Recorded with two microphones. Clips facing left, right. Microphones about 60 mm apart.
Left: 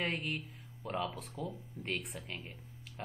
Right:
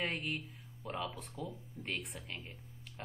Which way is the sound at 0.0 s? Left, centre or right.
Centre.